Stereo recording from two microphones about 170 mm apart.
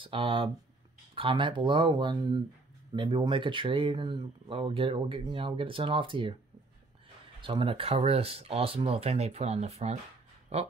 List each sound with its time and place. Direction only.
0.0 s speech: 30° right (ahead or behind)
7.4 s speech: 30° right (ahead or behind)